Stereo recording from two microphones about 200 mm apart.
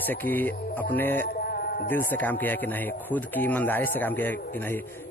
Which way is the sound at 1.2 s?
50° left (ahead or behind).